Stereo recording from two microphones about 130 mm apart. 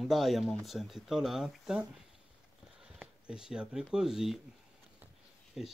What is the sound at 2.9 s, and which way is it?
Speech, 5° right (ahead or behind).